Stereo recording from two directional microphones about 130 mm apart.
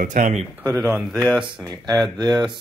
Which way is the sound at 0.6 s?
20° right (ahead or behind).